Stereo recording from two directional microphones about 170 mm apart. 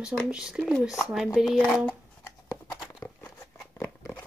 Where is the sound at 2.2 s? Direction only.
20° left (ahead or behind).